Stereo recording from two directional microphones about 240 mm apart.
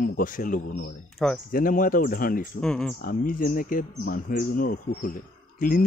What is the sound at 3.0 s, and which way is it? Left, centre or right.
Speech, left.